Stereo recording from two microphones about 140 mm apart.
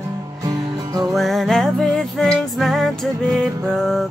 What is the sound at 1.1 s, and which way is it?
Music, centre (ahead or behind).